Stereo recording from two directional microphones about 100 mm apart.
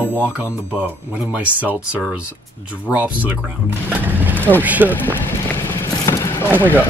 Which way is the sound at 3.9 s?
15° right (ahead or behind).